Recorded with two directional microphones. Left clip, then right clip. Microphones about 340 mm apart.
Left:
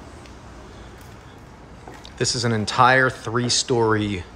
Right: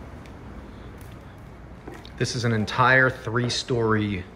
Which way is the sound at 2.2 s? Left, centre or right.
Centre.